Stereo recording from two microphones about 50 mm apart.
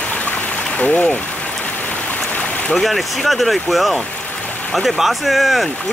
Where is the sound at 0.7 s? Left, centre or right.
Left.